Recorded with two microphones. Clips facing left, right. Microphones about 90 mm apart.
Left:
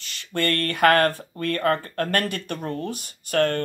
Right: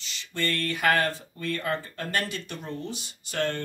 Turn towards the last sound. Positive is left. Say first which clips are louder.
# left 7 dB
turn(degrees=55)  # may be behind; listen again after turning